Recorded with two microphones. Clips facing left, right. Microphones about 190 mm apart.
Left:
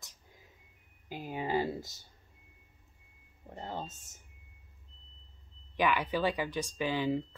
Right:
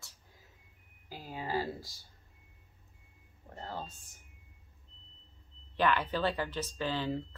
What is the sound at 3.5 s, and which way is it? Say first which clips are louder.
Speech: left 2 dB; 20° left (ahead or behind).